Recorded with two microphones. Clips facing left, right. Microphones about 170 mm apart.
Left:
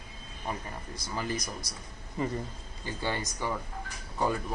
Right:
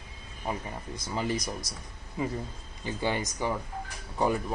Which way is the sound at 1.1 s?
20° right (ahead or behind).